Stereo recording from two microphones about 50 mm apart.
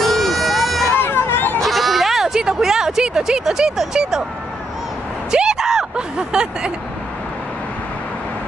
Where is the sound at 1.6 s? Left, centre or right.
Centre.